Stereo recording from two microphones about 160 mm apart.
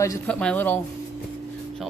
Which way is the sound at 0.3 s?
5° left (ahead or behind).